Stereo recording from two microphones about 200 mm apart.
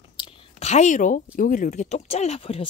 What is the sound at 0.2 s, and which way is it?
A woman's voice, 30° left (ahead or behind).